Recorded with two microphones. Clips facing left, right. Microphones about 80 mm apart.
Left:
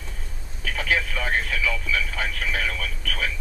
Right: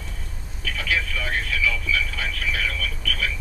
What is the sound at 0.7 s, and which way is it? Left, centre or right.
Speech, left.